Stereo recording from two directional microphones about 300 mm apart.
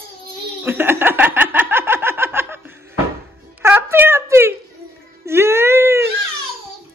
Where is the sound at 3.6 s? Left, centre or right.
Centre.